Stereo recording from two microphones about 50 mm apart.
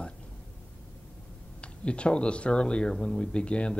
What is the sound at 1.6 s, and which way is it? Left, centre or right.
Speech, left.